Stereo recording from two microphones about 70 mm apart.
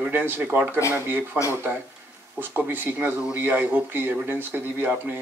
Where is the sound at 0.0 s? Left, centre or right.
Right.